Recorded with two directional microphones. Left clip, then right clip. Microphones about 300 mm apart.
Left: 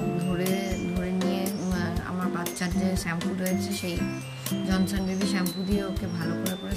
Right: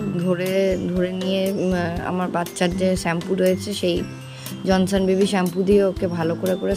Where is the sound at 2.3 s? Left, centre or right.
Centre.